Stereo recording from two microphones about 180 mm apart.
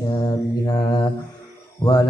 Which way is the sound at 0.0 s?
25° left (ahead or behind).